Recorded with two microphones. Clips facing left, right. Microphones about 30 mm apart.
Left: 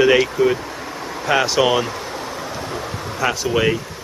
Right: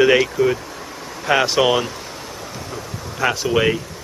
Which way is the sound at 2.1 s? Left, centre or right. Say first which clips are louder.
Left 5 dB; left.